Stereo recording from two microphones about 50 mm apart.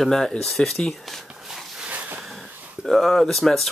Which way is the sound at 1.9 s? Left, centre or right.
Right.